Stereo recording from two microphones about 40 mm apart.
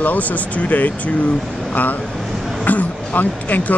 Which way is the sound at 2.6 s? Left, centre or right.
Left.